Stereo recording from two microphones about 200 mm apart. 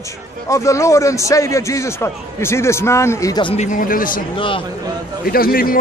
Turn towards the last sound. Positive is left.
turn(degrees=45)  # may be behind; listen again after turning